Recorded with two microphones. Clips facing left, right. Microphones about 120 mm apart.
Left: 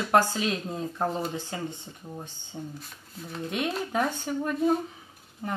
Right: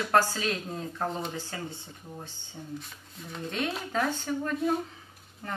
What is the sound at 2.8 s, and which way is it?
Speech, centre (ahead or behind).